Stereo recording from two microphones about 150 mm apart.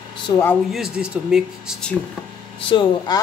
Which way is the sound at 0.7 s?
5° right (ahead or behind).